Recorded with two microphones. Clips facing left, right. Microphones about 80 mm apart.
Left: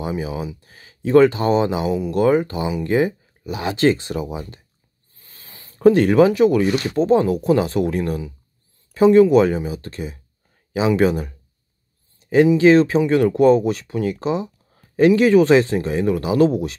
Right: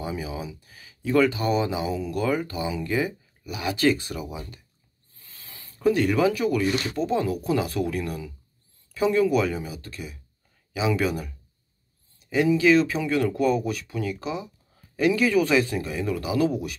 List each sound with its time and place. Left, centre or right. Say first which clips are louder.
0.0 s speech: left 6 dB; left
5.1 s a sound: left 2 dB; left
5.8 s speech: left 8 dB; left
6.3 s speech: left 8 dB; left
12.5 s speech: left 7 dB; left